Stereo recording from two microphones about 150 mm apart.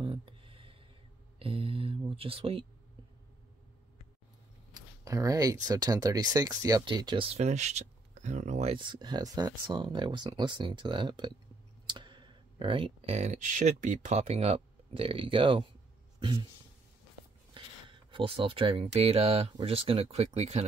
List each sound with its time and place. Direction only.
0.0 s a sound: 35° right (ahead or behind)
1.4 s speech: 40° right (ahead or behind)
5.0 s speech: 25° right (ahead or behind)
7.2 s speech: 50° right (ahead or behind)
8.7 s speech: 30° right (ahead or behind)
17.8 s speech: 35° right (ahead or behind)